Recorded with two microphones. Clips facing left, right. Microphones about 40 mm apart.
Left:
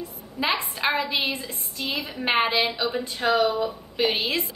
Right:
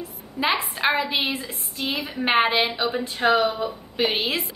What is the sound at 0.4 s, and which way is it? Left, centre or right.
A woman's voice, centre.